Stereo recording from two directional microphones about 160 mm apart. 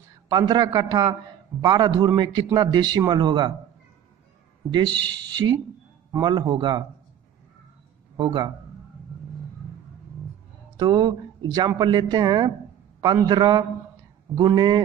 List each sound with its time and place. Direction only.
0.3 s a man's voice: 25° right (ahead or behind)
5.4 s a man's voice: 20° right (ahead or behind)
8.2 s a man's voice: 30° right (ahead or behind)
10.8 s a man's voice: 25° right (ahead or behind)